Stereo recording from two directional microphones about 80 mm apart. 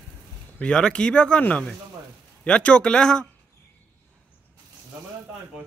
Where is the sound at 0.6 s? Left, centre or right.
Centre.